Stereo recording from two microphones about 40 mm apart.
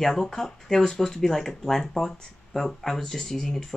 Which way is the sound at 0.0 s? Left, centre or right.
Centre.